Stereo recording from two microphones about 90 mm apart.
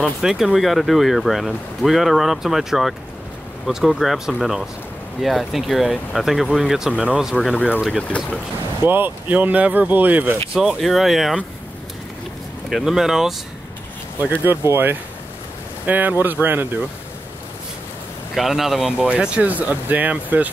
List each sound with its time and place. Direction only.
0.2 s speech: 5° right (ahead or behind)
8.8 s speech: 20° right (ahead or behind)
10.5 s speech: 10° right (ahead or behind)
12.6 s speech: 5° right (ahead or behind)
14.3 s speech: 25° right (ahead or behind)
18.3 s speech: centre (ahead or behind)